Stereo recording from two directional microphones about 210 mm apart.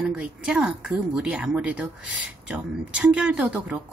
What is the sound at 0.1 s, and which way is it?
Speech, 5° right (ahead or behind).